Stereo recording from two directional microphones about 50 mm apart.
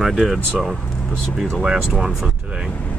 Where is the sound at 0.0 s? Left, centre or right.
Centre.